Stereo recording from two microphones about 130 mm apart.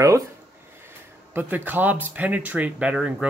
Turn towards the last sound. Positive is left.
turn(degrees=-10)  # may be behind; listen again after turning